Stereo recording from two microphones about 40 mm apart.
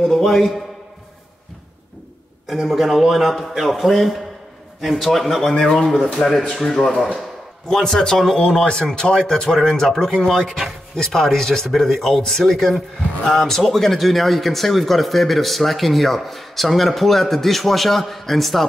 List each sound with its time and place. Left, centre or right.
0.1 s speech: centre
2.4 s speech: centre
8.4 s speech: centre